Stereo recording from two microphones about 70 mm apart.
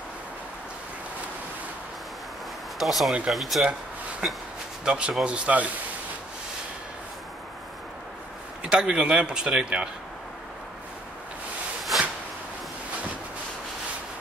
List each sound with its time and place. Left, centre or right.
2.8 s a man's voice: centre
8.6 s a man's voice: centre